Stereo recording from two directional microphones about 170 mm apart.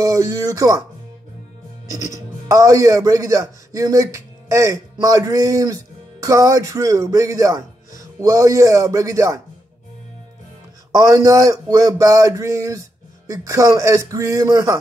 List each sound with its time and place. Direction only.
0.0 s a man's voice: 20° right (ahead or behind)
2.4 s a man's voice: 20° right (ahead or behind)
10.9 s a man's voice: 20° right (ahead or behind)